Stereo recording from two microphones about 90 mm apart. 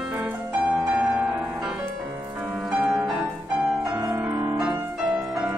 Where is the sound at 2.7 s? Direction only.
5° right (ahead or behind).